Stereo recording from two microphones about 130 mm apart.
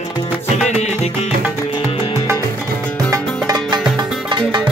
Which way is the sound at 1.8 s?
50° left (ahead or behind).